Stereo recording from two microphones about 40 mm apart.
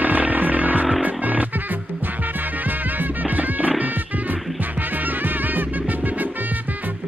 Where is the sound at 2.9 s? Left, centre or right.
Right.